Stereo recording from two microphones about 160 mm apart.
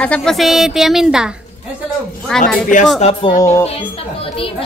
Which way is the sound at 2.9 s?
40° left (ahead or behind).